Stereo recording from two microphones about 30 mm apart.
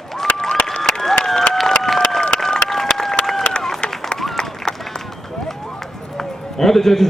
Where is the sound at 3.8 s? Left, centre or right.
Left.